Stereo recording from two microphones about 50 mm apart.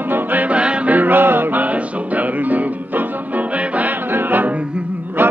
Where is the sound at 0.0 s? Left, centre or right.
Right.